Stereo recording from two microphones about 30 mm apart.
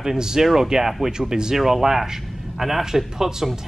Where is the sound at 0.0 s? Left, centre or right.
Centre.